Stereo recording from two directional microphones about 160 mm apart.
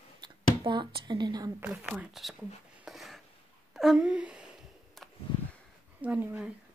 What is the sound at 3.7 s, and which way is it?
Speech, centre (ahead or behind).